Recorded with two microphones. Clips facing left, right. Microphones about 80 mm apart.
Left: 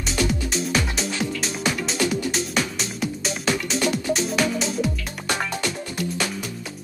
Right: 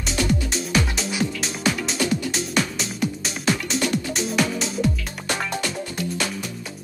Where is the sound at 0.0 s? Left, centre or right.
Centre.